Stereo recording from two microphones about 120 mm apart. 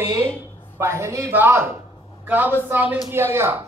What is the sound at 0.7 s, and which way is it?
A man's voice, 20° right (ahead or behind).